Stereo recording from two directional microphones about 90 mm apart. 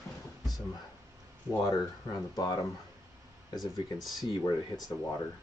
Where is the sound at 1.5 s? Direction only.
40° left (ahead or behind).